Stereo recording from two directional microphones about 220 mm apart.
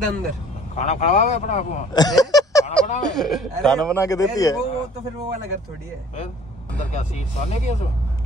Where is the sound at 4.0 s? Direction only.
15° left (ahead or behind).